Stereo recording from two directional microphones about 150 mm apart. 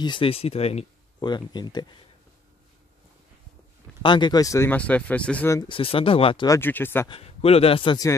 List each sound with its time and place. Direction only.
0.0 s a man's voice: 35° left (ahead or behind)
1.2 s speech: 30° left (ahead or behind)
4.0 s speech: 30° left (ahead or behind); by 5.5 s 10° left (ahead or behind)
5.7 s a man's voice: 35° left (ahead or behind)
6.4 s speech: 20° left (ahead or behind)
7.1 s a man's voice: 40° left (ahead or behind)